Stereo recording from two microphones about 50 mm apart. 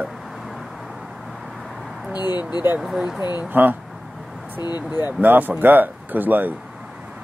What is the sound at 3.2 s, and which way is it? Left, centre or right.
Speech, right.